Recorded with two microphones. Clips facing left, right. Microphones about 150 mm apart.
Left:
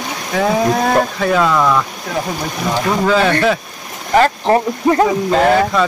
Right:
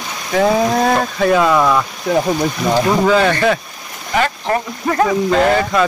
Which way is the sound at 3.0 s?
Centre (ahead or behind).